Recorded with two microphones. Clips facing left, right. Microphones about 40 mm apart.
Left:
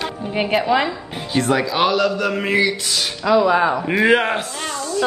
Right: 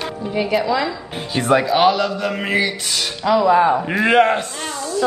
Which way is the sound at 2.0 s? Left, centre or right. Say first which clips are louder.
Left 2 dB; left.